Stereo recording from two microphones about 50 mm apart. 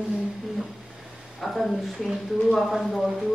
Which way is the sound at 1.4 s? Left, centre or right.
Centre.